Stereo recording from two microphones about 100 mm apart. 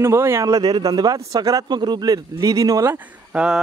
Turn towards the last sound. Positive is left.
turn(degrees=-10)  # may be behind; listen again after turning